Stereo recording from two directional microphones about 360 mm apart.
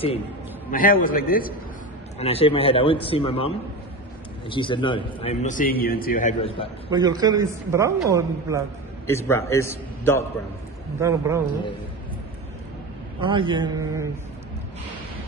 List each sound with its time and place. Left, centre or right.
0.7 s a man's voice: left
6.9 s a man's voice: centre
9.0 s a man's voice: centre
11.0 s a man's voice: centre
13.2 s a man's voice: centre